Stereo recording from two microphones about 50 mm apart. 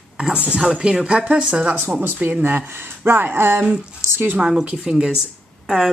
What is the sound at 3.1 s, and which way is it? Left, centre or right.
Speech, right.